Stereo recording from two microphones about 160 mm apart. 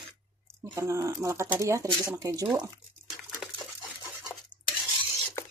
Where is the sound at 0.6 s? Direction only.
20° right (ahead or behind).